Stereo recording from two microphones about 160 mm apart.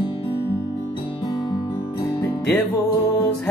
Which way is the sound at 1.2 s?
25° left (ahead or behind).